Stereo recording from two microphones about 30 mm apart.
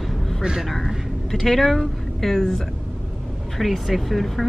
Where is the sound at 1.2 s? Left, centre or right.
Centre.